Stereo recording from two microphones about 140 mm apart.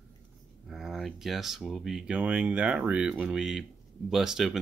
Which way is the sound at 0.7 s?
Centre (ahead or behind).